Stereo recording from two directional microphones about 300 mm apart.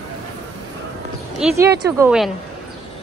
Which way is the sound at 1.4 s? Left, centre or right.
Centre.